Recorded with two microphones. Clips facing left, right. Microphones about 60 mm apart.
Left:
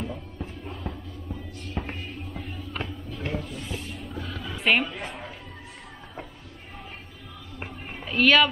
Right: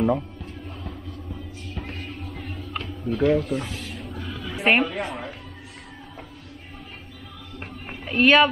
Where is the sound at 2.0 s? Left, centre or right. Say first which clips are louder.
Right 1 dB; right.